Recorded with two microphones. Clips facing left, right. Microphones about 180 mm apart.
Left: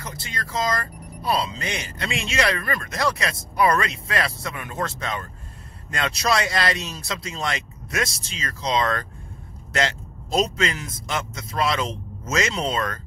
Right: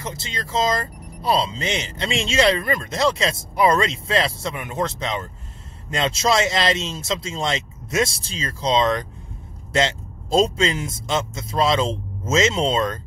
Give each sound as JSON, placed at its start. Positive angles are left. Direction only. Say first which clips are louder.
{"t": 0.0, "sound": "speech", "louder": "right 3 dB", "side_deg": -25}